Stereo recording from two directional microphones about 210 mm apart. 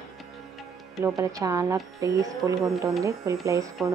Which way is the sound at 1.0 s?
15° right (ahead or behind).